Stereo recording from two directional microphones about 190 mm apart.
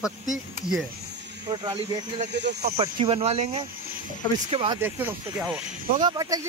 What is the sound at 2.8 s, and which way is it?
Speech, 30° right (ahead or behind).